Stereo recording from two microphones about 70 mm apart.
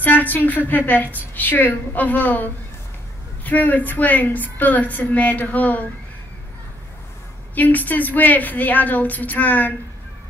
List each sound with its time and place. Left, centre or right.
0.0 s a woman's voice: left
7.5 s a woman's voice: left